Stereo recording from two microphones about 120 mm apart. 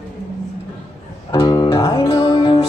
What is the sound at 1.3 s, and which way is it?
Guitar, 35° left (ahead or behind).